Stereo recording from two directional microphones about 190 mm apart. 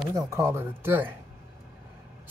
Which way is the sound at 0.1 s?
15° right (ahead or behind).